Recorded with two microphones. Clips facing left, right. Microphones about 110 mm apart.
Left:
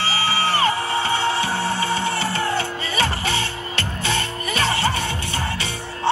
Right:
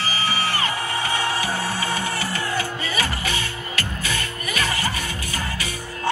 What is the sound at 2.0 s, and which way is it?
Music, 25° left (ahead or behind).